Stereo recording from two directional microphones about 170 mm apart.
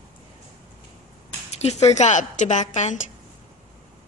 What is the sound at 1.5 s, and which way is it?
A woman's voice, 40° left (ahead or behind).